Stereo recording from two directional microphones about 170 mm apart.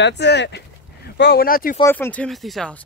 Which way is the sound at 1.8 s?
15° left (ahead or behind).